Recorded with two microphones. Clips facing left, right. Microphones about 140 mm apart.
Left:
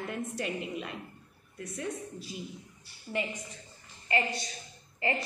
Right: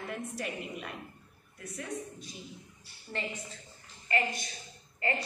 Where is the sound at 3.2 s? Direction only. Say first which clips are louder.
Left 4 dB; 15° left (ahead or behind).